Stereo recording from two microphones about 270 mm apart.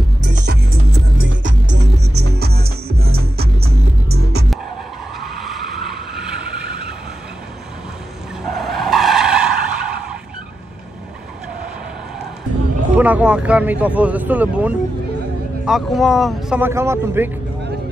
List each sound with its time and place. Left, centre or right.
0.3 s music: right
1.2 s music: right
5.4 s vehicle: centre
8.5 s vehicle: centre
12.9 s speech: centre